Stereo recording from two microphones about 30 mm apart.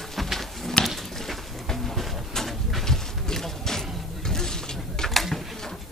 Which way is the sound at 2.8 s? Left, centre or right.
Centre.